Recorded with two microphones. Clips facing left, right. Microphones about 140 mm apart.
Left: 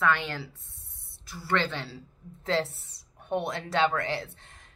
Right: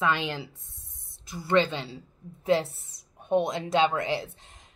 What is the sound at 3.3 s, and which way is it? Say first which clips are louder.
Speech: right 5 dB; 15° right (ahead or behind).